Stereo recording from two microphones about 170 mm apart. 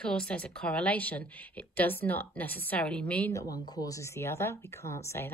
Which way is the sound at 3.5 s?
25° left (ahead or behind).